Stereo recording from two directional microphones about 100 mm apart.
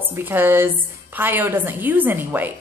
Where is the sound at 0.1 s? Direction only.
20° right (ahead or behind).